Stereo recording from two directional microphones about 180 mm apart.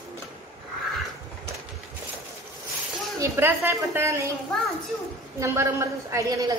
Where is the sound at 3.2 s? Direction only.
15° right (ahead or behind).